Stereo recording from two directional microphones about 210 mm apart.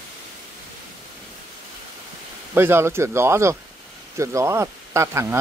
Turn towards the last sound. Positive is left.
turn(degrees=-15)  # may be behind; listen again after turning